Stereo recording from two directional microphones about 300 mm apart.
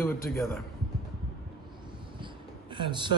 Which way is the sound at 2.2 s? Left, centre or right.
Centre.